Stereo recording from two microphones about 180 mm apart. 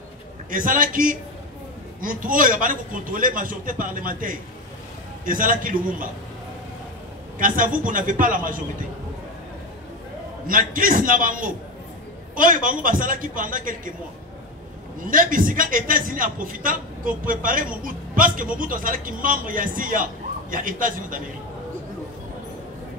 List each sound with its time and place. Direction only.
0.5 s a man's voice: 50° right (ahead or behind)
7.3 s a man's voice: 50° right (ahead or behind)
10.4 s a man's voice: 50° right (ahead or behind)
15.0 s a man's voice: 50° right (ahead or behind)